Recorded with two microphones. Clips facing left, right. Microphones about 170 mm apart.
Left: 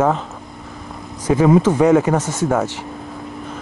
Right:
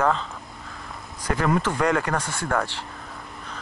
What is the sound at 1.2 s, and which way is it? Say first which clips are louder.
Speech: left 10 dB; 10° left (ahead or behind).